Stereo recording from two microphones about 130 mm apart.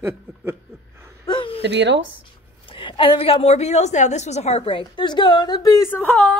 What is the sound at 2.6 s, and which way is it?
A woman's voice, 40° left (ahead or behind).